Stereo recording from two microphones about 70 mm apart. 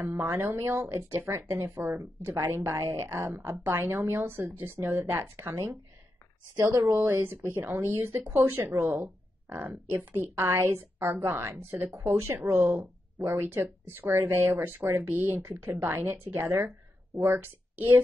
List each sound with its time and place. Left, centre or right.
0.3 s speech: right
6.5 s speech: right
6.9 s speech: right